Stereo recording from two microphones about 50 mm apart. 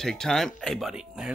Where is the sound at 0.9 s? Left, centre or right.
Centre.